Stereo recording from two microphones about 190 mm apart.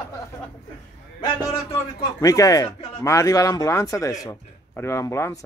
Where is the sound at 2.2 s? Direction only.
20° left (ahead or behind).